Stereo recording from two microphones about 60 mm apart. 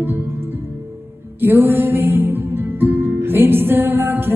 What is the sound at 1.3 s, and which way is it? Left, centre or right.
Music, right.